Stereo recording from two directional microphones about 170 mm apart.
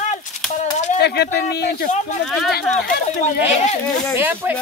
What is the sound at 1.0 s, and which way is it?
Speech, 75° left (ahead or behind).